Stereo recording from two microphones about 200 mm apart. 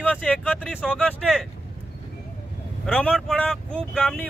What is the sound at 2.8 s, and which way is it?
Speech, 5° left (ahead or behind).